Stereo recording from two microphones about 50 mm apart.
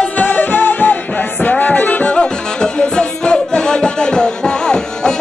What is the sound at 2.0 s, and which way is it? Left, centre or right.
Music, centre.